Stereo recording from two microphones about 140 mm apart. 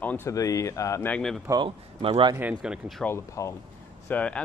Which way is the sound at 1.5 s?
35° right (ahead or behind).